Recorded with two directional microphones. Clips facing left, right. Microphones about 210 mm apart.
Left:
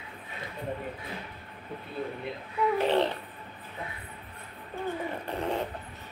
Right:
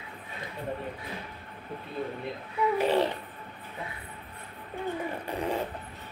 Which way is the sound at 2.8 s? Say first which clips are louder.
Right 1 dB; 10° right (ahead or behind).